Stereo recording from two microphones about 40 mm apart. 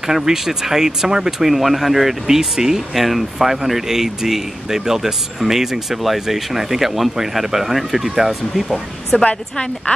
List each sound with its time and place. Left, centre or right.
0.0 s speech: centre
1.5 s speech: centre
9.2 s a woman's voice: left